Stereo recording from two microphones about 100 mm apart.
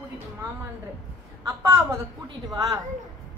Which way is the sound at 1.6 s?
25° right (ahead or behind).